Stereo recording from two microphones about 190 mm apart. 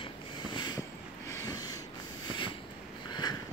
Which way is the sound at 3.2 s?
20° left (ahead or behind).